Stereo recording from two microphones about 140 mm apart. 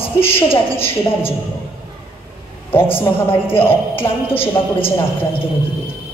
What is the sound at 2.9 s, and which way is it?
Speech, 15° left (ahead or behind).